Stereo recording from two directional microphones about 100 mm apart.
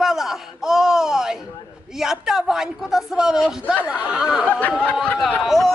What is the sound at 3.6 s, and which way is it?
Speech, 20° left (ahead or behind).